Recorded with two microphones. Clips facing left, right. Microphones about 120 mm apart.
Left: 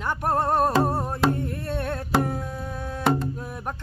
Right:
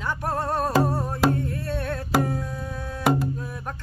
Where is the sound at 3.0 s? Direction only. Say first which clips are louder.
Right 1 dB; 5° right (ahead or behind).